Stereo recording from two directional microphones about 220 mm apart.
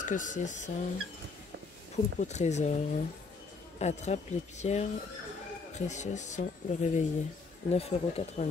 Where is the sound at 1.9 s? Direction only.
30° left (ahead or behind).